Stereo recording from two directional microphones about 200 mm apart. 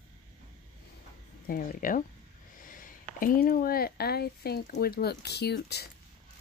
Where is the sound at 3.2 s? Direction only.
45° left (ahead or behind).